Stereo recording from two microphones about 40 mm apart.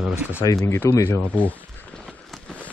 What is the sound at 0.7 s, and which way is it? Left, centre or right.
Speech, left.